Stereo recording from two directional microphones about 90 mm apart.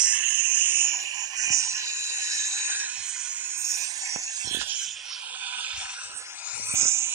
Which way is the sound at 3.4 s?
25° right (ahead or behind).